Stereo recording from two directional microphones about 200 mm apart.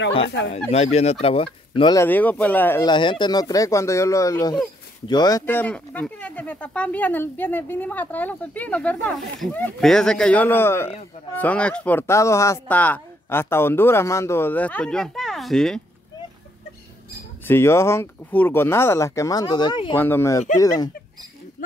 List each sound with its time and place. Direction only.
0.7 s speech: 30° left (ahead or behind)
2.0 s speech: 10° left (ahead or behind)
2.9 s speech: 25° left (ahead or behind); by 15.8 s centre (ahead or behind)
17.5 s speech: 10° left (ahead or behind)
20.0 s speech: 10° left (ahead or behind)